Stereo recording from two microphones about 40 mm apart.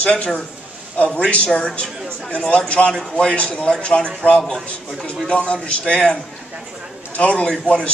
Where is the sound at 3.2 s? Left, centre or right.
Left.